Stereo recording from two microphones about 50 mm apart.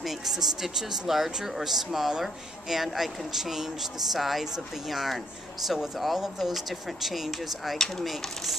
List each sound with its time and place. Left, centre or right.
0.0 s speech: centre
7.7 s speech: centre
8.1 s speech: centre